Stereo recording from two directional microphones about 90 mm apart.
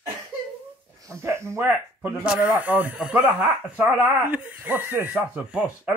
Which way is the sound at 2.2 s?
15° right (ahead or behind).